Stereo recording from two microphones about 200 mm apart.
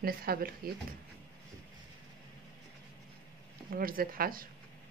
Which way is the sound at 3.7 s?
45° right (ahead or behind).